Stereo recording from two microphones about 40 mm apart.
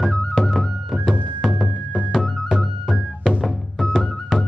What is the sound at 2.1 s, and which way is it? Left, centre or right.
Music, centre.